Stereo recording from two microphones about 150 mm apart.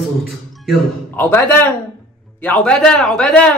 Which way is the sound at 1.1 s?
15° left (ahead or behind).